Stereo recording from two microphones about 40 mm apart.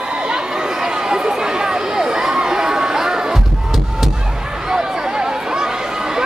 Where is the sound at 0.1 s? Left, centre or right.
Right.